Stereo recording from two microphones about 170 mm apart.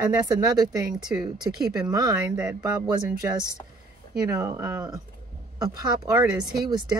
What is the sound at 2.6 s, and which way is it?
Speech, 20° right (ahead or behind).